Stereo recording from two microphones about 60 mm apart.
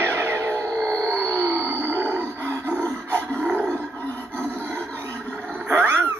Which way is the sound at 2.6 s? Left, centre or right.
Left.